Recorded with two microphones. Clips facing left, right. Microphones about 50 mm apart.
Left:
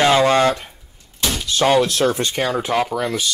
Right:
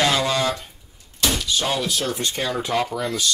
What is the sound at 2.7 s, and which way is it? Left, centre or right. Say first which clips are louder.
Speech: left 3 dB; centre.